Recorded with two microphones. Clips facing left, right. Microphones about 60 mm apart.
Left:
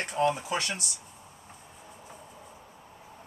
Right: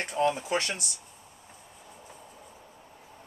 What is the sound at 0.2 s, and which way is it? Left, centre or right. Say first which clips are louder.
Speech: even; centre.